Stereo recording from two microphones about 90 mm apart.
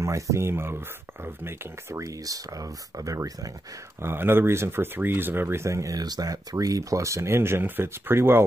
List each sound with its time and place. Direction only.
0.0 s speech: 35° right (ahead or behind)
4.0 s speech: 25° right (ahead or behind)